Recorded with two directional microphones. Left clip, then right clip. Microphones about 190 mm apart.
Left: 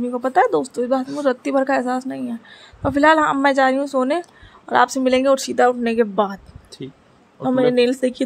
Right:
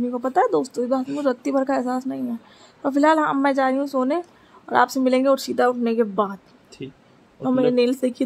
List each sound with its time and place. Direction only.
0.0 s a woman's voice: 15° left (ahead or behind)